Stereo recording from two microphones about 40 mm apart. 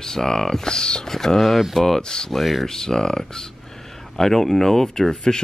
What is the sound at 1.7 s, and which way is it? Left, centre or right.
Speech, centre.